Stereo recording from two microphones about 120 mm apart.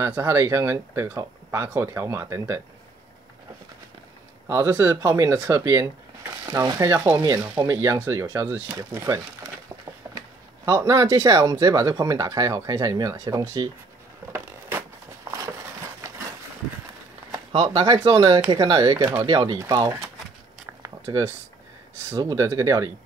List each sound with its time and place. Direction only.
0.0 s speech: 20° right (ahead or behind)
4.5 s speech: 20° right (ahead or behind)
7.2 s speech: 35° right (ahead or behind)
14.3 s a sound: 20° right (ahead or behind)
17.6 s speech: 35° right (ahead or behind)
18.9 s speech: 20° right (ahead or behind)
19.2 s speech: 40° right (ahead or behind)
20.6 s a sound: 25° right (ahead or behind)
22.1 s speech: 25° right (ahead or behind)